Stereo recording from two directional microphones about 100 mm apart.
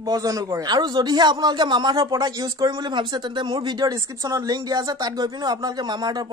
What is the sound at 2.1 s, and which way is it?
Speech, 35° right (ahead or behind).